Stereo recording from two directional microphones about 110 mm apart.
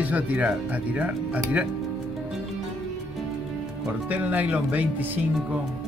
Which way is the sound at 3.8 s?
15° right (ahead or behind).